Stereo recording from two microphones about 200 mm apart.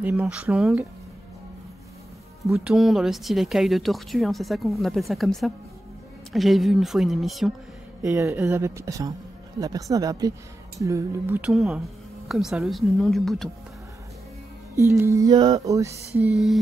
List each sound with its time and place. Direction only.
0.0 s speech: 5° right (ahead or behind)
2.4 s speech: centre (ahead or behind)
8.0 s music: 15° right (ahead or behind)
10.8 s speech: 15° right (ahead or behind); by 13.5 s centre (ahead or behind)
14.8 s music: 15° right (ahead or behind)